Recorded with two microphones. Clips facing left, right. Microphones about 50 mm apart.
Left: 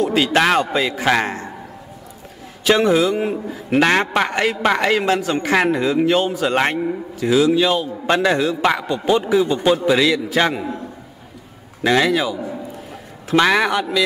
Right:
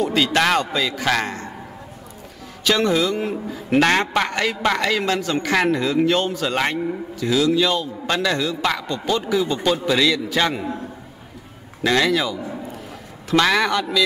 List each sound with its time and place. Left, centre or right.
0.1 s a man's voice: left
0.7 s a man's voice: left
2.6 s a man's voice: left
6.3 s a man's voice: left
10.5 s a man's voice: centre
11.8 s a man's voice: centre